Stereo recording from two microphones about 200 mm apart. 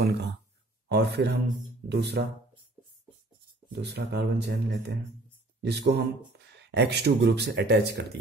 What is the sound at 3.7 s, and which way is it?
Speech, 55° right (ahead or behind).